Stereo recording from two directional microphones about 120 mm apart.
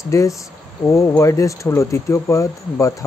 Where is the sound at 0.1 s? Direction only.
25° left (ahead or behind).